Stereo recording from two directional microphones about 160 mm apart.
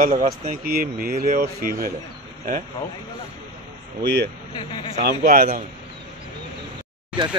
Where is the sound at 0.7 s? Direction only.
65° right (ahead or behind).